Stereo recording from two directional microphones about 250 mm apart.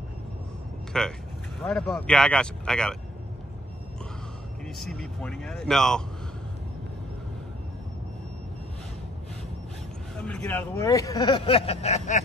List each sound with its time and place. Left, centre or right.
0.9 s speech: centre
4.6 s speech: centre
10.2 s speech: centre; by 12.2 s left